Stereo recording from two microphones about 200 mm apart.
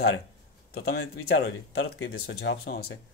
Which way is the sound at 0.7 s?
55° left (ahead or behind).